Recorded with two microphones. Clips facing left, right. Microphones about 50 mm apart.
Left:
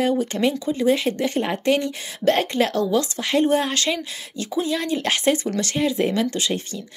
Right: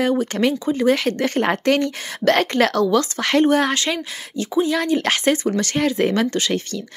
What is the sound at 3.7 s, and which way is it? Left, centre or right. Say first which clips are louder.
Speech: right 1 dB; right.